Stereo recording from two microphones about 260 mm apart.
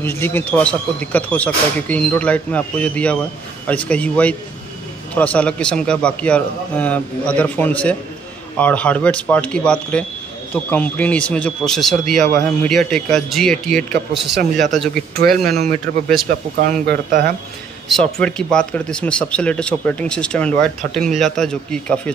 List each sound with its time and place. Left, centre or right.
0.0 s speech: centre
16.5 s speech: right
17.8 s speech: centre